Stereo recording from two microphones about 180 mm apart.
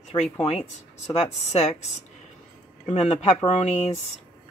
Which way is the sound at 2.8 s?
35° left (ahead or behind).